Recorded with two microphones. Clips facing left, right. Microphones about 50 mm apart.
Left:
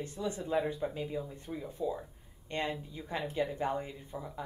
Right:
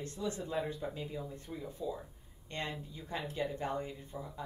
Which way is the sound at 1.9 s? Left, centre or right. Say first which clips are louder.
Left 3 dB; centre.